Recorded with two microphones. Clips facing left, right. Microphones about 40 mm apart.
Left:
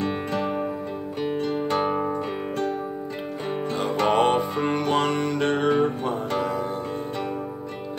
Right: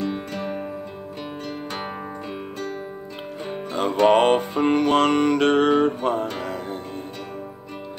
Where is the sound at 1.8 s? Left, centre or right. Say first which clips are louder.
Left 8 dB; centre.